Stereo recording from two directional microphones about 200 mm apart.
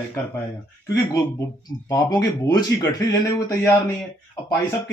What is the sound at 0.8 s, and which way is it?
Speech, 15° left (ahead or behind).